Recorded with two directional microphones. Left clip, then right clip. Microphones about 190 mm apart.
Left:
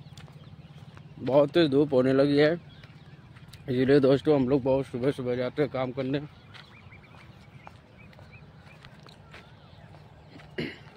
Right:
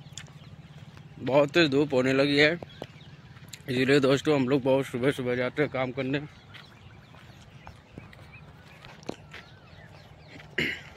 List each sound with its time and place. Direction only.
1.2 s speech: 10° left (ahead or behind)
4.6 s speech: 10° right (ahead or behind)
10.5 s a sound: centre (ahead or behind)